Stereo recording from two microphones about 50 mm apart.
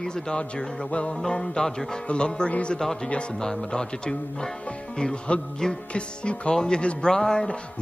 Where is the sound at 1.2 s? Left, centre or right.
Centre.